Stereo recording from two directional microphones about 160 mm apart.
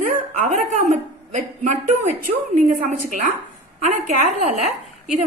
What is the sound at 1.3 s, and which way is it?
A woman's voice, 50° right (ahead or behind).